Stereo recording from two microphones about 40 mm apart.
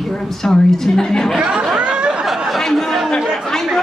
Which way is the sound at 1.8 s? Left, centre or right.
Right.